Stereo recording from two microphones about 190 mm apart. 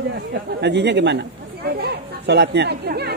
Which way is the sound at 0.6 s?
65° right (ahead or behind).